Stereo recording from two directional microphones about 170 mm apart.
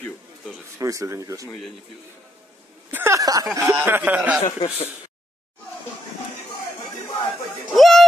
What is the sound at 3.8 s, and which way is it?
Speech, 10° right (ahead or behind).